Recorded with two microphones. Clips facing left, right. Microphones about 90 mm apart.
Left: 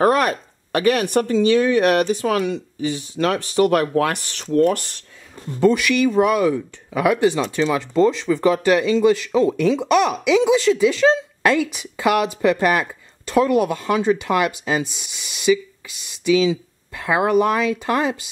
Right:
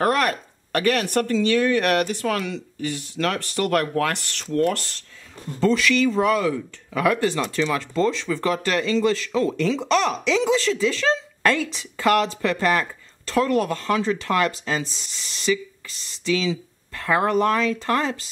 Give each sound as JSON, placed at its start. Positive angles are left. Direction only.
{"t": 0.0, "sound": "speech", "side_deg": 15}